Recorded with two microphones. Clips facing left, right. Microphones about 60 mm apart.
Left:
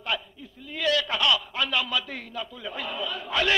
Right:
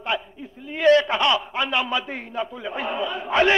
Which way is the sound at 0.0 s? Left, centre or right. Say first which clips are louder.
Right 4 dB; right.